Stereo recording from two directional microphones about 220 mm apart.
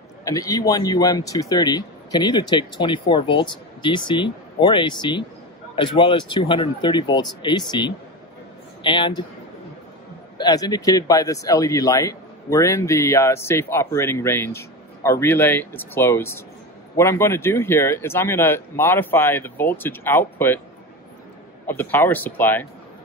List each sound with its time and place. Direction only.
0.2 s a man's voice: 15° left (ahead or behind)
10.3 s speech: 20° left (ahead or behind)
21.6 s speech: 10° left (ahead or behind)